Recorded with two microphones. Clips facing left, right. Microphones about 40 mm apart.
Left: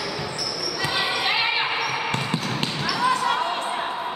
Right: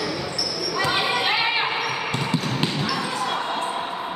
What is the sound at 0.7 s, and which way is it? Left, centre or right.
Basketball bounce, right.